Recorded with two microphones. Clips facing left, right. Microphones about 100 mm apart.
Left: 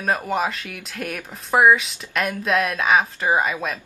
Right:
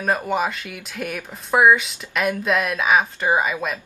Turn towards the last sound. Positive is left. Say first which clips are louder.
# even
turn(degrees=0)  # may be behind; listen again after turning